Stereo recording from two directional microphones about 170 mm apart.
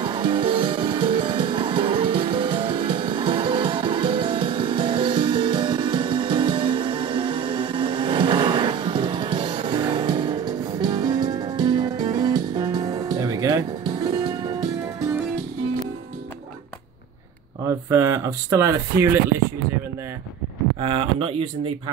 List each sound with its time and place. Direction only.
0.0 s music: 30° right (ahead or behind)
17.6 s speech: 15° right (ahead or behind)
20.8 s speech: 30° right (ahead or behind)